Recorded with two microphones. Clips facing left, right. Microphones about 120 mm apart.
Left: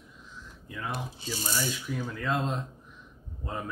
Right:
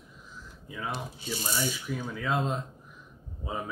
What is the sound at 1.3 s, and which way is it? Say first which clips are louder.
Speech: right 1 dB; centre (ahead or behind).